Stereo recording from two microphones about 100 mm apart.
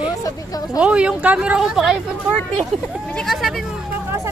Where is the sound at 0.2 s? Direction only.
40° left (ahead or behind).